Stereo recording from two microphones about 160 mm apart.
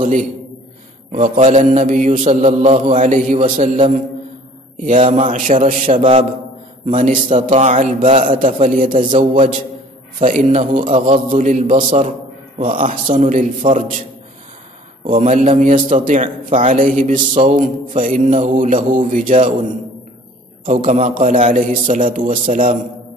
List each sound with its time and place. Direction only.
1.3 s mantra: 40° right (ahead or behind)
1.9 s a man's voice: 50° right (ahead or behind)
5.1 s a man's voice: 50° right (ahead or behind)
5.9 s mantra: 35° right (ahead or behind)
6.9 s a man's voice: 55° right (ahead or behind)
15.0 s a man's voice: 50° right (ahead or behind)
20.6 s a man's voice: 50° right (ahead or behind)